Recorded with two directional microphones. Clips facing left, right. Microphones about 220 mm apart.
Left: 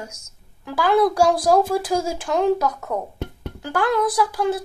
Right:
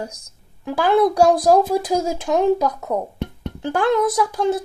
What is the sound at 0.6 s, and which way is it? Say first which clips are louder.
A woman's voice: right 2 dB; 20° right (ahead or behind).